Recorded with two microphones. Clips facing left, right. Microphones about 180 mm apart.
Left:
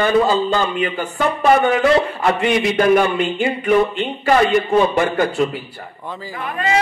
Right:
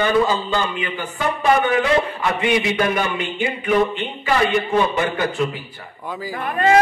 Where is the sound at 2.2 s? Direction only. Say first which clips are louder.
Left 3 dB; 45° left (ahead or behind).